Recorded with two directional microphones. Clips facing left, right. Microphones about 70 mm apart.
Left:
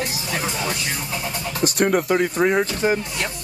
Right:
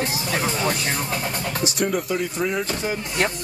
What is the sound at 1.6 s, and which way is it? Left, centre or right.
Speech, left.